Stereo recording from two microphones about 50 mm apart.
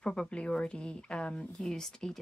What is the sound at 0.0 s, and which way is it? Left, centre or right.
Speech, centre.